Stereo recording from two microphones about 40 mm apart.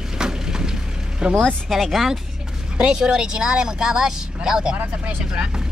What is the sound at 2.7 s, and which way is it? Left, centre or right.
Speech, right.